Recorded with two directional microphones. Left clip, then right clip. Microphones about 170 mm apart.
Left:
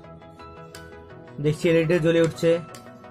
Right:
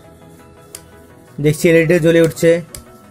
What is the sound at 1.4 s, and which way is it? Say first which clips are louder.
Speech: right 9 dB; 20° right (ahead or behind).